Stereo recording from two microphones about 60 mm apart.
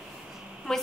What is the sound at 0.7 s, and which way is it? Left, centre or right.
Speech, centre.